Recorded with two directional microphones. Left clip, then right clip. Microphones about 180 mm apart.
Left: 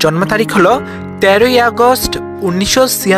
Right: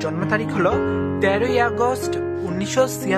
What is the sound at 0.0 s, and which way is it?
Speech, 45° left (ahead or behind).